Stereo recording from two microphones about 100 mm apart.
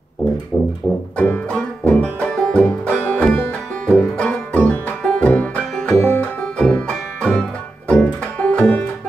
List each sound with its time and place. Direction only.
1.1 s banjo: 15° left (ahead or behind)
3.8 s music: 10° left (ahead or behind)
5.9 s music: 20° left (ahead or behind)
6.6 s music: 5° left (ahead or behind)